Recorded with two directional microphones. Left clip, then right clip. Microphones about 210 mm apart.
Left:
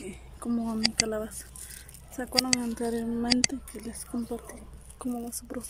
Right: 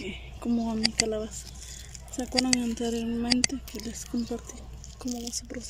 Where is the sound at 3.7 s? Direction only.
25° left (ahead or behind).